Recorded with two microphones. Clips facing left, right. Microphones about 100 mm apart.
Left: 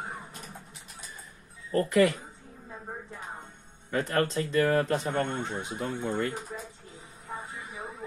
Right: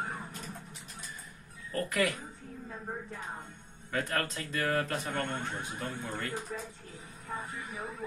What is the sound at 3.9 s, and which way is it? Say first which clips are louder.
Speech: left 6 dB; 25° left (ahead or behind).